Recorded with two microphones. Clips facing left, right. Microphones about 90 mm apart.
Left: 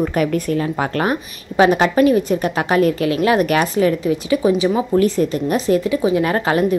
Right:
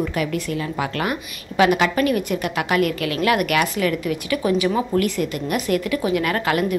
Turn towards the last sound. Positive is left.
turn(degrees=30)  # may be behind; listen again after turning